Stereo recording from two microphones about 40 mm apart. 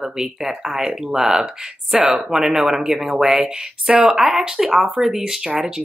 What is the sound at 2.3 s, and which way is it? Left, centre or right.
Speech, centre.